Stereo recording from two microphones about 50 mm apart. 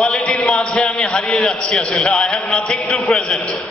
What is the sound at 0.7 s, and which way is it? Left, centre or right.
Speech, centre.